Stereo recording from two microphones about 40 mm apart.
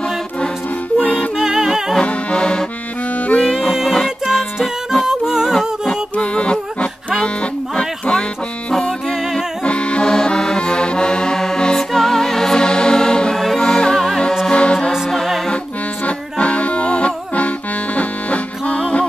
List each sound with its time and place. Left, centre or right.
0.9 s music: left
1.4 s music: centre
2.0 s accordion: left
3.7 s music: centre
4.3 s music: centre
6.1 s music: left
9.7 s accordion: left
13.6 s music: centre
13.9 s music: centre
14.5 s music: left
16.1 s music: left